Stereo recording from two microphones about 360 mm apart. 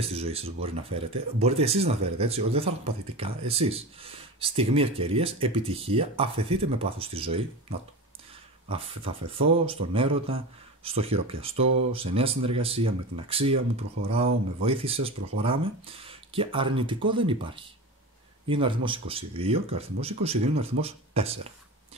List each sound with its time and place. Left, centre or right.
0.0 s speech: centre
8.6 s speech: centre